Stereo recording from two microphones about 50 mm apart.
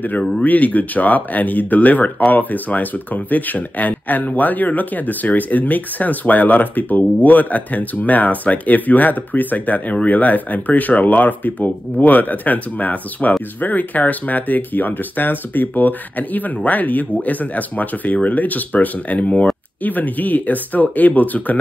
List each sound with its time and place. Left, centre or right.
0.4 s speech: left